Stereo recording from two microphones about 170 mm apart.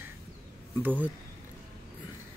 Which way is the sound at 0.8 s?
10° right (ahead or behind).